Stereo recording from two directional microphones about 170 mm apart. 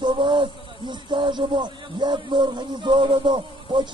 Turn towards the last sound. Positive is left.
turn(degrees=-30)  # may be behind; listen again after turning